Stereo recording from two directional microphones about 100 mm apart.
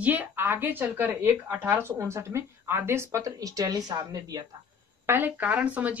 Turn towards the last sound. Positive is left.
turn(degrees=-15)  # may be behind; listen again after turning